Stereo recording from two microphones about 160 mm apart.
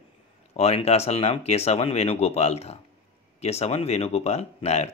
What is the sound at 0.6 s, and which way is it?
Speech, 40° left (ahead or behind).